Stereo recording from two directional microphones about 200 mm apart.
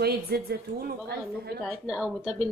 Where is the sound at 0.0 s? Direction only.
50° right (ahead or behind).